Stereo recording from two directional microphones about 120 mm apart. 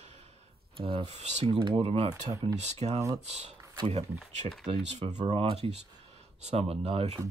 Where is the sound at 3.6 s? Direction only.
35° right (ahead or behind).